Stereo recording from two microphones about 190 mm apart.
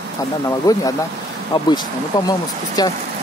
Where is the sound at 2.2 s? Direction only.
20° left (ahead or behind).